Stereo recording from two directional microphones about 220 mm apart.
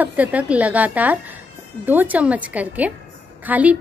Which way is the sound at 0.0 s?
5° right (ahead or behind).